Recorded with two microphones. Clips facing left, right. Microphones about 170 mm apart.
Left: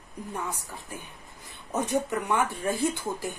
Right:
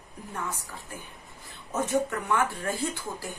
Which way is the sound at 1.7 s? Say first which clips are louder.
Even; 20° left (ahead or behind).